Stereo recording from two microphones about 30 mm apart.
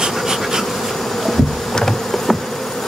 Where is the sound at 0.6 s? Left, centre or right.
Centre.